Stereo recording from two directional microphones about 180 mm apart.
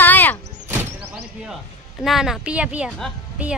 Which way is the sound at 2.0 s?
Centre (ahead or behind).